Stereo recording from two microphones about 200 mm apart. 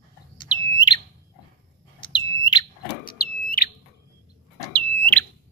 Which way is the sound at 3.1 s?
45° left (ahead or behind).